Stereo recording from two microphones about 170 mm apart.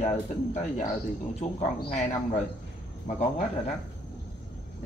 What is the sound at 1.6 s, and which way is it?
Speech, 40° left (ahead or behind).